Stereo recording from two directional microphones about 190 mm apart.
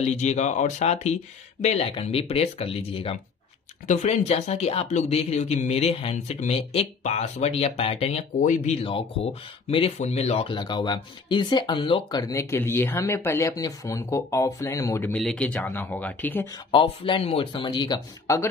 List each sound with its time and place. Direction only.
0.0 s speech: 35° left (ahead or behind)
8.8 s speech: 30° left (ahead or behind); by 16.4 s 10° left (ahead or behind)
16.7 s speech: 25° left (ahead or behind)